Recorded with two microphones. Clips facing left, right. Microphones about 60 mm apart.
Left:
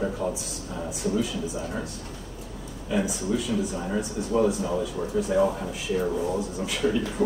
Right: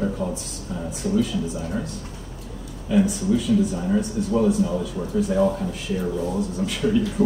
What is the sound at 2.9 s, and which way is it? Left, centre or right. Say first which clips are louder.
Speech: right 6 dB; centre.